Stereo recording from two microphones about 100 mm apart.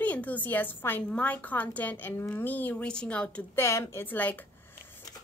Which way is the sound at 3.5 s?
25° left (ahead or behind).